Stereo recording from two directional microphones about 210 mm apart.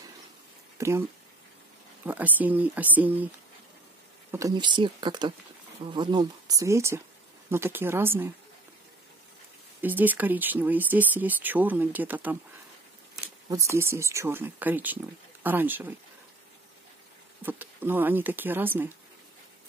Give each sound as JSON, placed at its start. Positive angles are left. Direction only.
{"t": 0.7, "sound": "speech", "side_deg": -15}
{"t": 2.0, "sound": "speech", "side_deg": -10}
{"t": 4.3, "sound": "speech", "side_deg": -15}
{"t": 9.8, "sound": "speech", "side_deg": -10}
{"t": 13.7, "sound": "speech", "side_deg": -10}
{"t": 17.4, "sound": "speech", "side_deg": -10}